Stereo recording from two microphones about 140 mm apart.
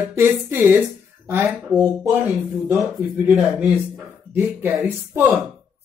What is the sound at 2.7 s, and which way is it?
Speech, centre (ahead or behind).